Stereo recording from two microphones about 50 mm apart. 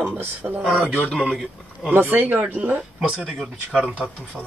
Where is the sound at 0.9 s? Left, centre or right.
Left.